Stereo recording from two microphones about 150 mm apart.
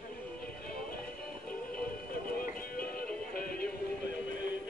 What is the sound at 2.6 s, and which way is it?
Synthetic singing, 75° left (ahead or behind).